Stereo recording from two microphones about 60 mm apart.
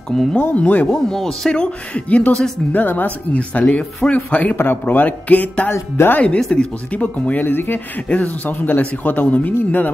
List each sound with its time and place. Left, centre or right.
0.1 s speech: centre
0.6 s speech: left
0.8 s speech: centre
1.6 s a woman's voice: left
4.6 s speech: left
5.7 s speech: left
6.1 s speech: left